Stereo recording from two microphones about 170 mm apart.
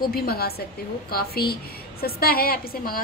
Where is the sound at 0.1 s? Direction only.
65° left (ahead or behind).